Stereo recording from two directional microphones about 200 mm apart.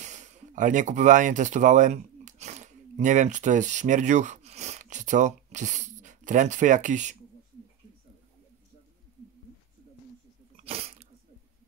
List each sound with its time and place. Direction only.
0.0 s speech: 35° right (ahead or behind)
10.5 s sneeze: 30° right (ahead or behind)